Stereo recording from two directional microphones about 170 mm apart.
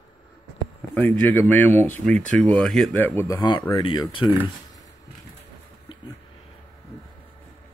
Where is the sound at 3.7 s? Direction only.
25° left (ahead or behind).